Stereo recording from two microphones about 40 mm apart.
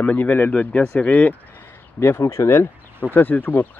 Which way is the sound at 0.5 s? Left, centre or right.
Left.